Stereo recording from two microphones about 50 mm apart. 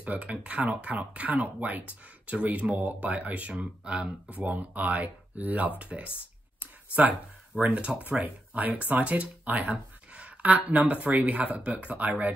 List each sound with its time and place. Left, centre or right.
0.1 s speech: right
4.5 s speech: right
6.6 s a sound: right
7.6 s speech: right